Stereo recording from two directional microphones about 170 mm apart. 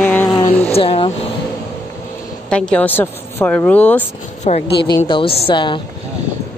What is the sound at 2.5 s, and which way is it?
A woman's voice, 5° left (ahead or behind).